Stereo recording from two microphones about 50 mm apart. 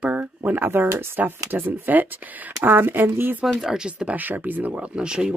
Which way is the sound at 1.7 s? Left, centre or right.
Right.